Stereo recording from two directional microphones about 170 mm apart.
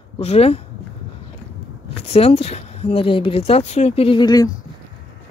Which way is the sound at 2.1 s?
35° left (ahead or behind).